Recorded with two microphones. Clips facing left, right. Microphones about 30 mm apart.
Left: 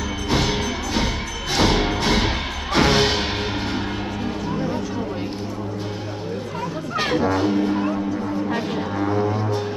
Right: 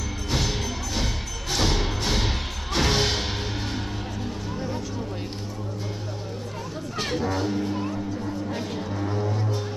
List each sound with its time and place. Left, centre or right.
0.3 s music: left
7.0 s music: left